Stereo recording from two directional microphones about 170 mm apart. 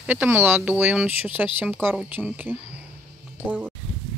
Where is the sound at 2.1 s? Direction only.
10° right (ahead or behind).